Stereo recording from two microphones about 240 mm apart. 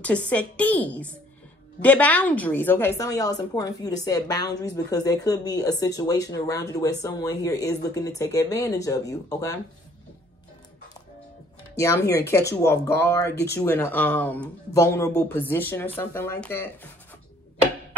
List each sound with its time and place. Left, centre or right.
0.0 s a woman's voice: centre
11.8 s a woman's voice: centre